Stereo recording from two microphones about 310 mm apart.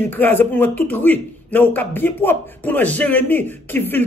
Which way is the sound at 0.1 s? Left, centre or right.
Centre.